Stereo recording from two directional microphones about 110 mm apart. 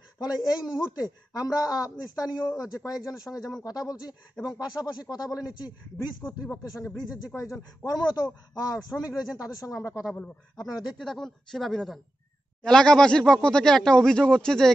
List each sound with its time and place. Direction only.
0.2 s a man's voice: 35° left (ahead or behind)
11.0 s speech: 5° left (ahead or behind)